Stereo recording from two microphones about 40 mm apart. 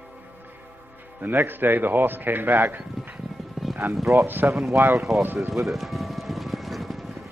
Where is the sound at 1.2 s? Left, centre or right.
Right.